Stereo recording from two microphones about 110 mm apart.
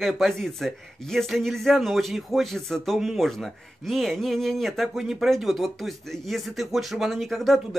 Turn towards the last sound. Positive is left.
turn(degrees=0)  # may be behind; listen again after turning